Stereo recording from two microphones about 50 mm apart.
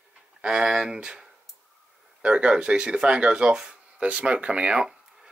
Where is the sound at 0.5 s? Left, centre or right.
Centre.